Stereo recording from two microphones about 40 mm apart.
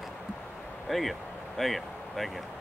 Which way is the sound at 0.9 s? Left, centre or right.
Centre.